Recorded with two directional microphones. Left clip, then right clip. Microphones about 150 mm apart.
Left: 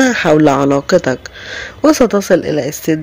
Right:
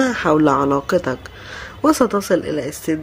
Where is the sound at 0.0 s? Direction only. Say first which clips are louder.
Left 6 dB; 25° left (ahead or behind).